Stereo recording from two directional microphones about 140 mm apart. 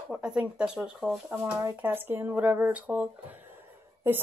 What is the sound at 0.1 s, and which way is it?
Speech, 10° right (ahead or behind).